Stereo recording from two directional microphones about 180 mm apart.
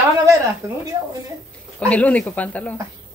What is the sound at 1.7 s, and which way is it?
Giggle, 5° left (ahead or behind).